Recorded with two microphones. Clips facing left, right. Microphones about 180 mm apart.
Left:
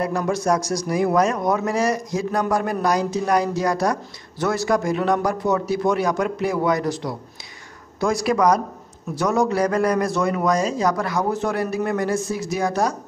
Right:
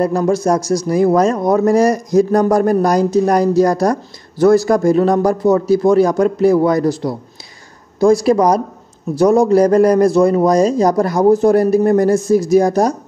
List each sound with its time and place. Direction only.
0.0 s a man's voice: 30° right (ahead or behind)
8.0 s a man's voice: 30° right (ahead or behind)